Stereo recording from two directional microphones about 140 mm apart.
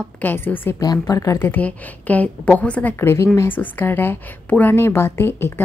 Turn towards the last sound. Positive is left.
turn(degrees=15)  # may be behind; listen again after turning